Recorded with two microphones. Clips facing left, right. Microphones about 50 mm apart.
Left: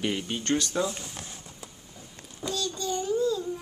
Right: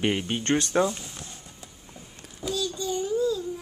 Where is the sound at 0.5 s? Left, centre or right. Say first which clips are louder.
Right 4 dB; right.